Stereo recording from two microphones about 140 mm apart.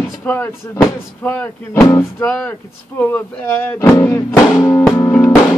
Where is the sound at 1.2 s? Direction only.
10° left (ahead or behind).